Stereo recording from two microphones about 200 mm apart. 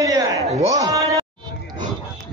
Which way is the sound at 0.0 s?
15° right (ahead or behind).